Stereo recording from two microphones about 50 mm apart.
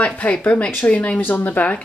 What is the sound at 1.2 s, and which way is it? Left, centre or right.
Speech, left.